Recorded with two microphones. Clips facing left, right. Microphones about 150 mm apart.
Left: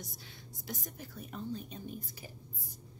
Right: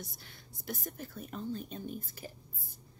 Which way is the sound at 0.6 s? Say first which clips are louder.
Right 3 dB; 50° right (ahead or behind).